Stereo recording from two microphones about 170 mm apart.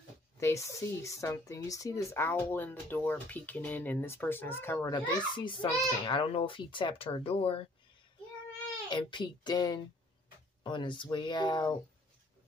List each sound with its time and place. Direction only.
0.4 s speech: 15° left (ahead or behind); by 7.6 s 35° left (ahead or behind)
8.8 s speech: 25° left (ahead or behind)